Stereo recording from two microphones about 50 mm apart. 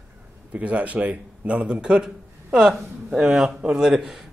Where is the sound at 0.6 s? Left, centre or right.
Right.